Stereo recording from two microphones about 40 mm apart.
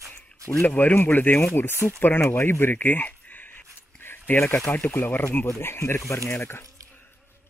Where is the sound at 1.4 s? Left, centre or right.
Left.